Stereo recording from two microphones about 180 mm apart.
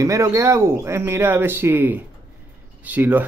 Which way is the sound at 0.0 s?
15° right (ahead or behind).